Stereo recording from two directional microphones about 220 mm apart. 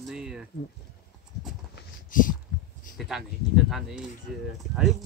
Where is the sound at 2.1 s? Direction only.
40° left (ahead or behind).